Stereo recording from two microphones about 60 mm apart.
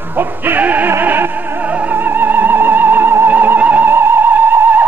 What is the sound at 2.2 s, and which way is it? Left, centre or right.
Music, right.